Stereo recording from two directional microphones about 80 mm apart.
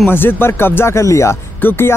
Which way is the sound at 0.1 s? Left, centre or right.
Left.